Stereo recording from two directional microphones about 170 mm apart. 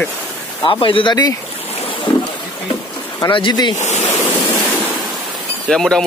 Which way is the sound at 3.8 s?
40° left (ahead or behind).